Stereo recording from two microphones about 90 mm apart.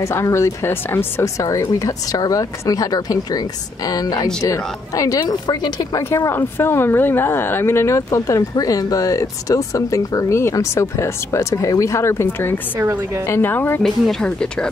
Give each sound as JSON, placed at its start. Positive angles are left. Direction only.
{"t": 0.0, "sound": "a woman's voice", "side_deg": 35}
{"t": 5.9, "sound": "a woman's voice", "side_deg": 30}
{"t": 13.8, "sound": "speech", "side_deg": 10}